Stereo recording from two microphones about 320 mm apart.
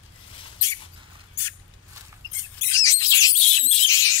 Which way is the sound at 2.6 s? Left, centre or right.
Centre.